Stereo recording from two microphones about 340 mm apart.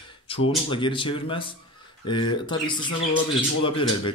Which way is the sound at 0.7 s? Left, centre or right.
Centre.